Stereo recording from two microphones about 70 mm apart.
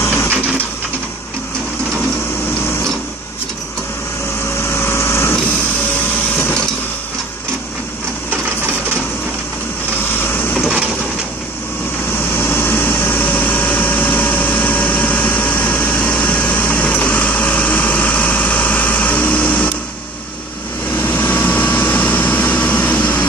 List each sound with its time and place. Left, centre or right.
0.0 s printer: left
4.7 s light engine: left
10.2 s vehicle: left
12.4 s vehicle: left
21.0 s vehicle: left